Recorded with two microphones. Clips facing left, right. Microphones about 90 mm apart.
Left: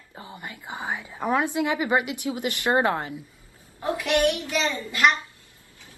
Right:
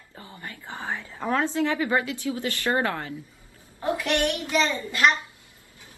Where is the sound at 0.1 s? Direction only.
20° left (ahead or behind).